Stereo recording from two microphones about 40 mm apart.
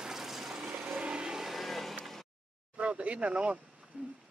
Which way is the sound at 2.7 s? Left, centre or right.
Right.